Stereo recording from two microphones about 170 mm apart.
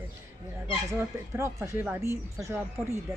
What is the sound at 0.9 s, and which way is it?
Speech, 15° right (ahead or behind).